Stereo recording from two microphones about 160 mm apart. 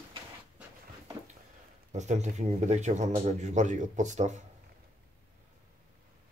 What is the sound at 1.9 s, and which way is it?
Speech, 45° right (ahead or behind).